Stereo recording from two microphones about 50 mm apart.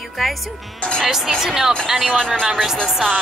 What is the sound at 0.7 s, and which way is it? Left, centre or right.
Speech, centre.